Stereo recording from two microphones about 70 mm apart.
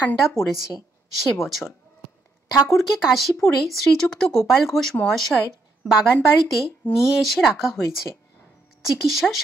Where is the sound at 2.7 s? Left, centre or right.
Centre.